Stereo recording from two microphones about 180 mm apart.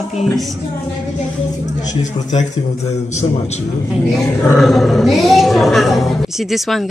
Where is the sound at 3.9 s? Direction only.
Centre (ahead or behind).